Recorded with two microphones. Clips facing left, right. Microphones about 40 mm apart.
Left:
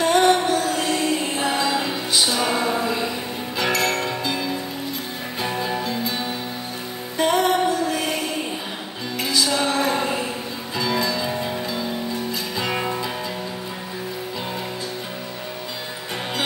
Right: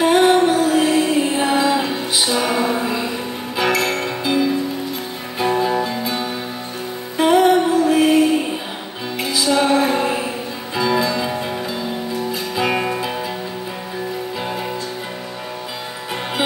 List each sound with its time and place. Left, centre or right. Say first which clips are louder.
0.0 s music: right 4 dB; centre
9.2 s music: right 4 dB; centre